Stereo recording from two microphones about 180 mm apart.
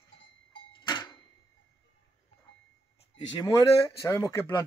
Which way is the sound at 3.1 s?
25° left (ahead or behind).